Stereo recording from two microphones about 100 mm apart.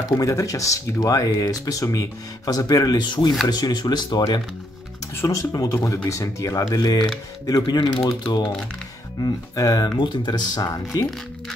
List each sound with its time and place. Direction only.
0.2 s speech: 35° left (ahead or behind)
5.1 s speech: 30° left (ahead or behind)
9.2 s speech: 40° left (ahead or behind)
9.9 s speech: 50° left (ahead or behind)